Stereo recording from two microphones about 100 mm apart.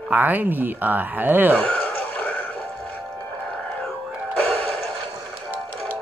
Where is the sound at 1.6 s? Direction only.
10° left (ahead or behind).